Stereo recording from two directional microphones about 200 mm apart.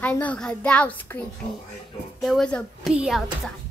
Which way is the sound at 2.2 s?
5° left (ahead or behind).